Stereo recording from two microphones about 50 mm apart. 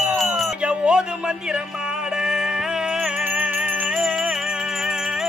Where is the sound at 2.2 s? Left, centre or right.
Centre.